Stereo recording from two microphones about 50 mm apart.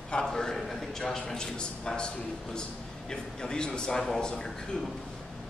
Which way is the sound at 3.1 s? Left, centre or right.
Centre.